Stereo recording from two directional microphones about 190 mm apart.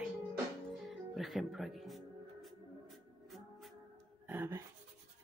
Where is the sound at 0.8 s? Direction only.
Centre (ahead or behind).